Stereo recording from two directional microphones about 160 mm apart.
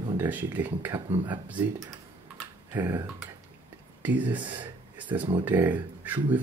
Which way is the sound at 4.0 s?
10° right (ahead or behind).